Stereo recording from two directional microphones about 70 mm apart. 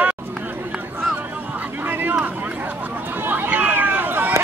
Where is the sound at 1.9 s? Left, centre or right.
Right.